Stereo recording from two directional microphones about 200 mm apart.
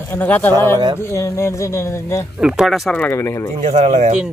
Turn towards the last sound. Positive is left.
turn(degrees=-35)  # may be behind; listen again after turning